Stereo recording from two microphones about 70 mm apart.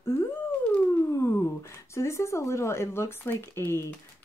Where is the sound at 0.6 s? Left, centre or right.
Left.